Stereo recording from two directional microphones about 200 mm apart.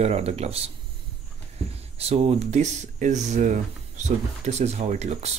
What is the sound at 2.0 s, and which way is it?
Speech, 30° right (ahead or behind).